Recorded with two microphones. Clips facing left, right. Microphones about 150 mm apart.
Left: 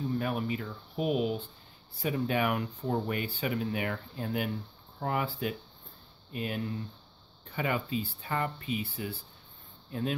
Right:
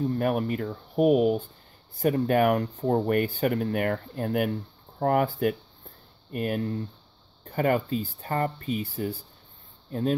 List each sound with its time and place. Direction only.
0.0 s speech: 55° right (ahead or behind)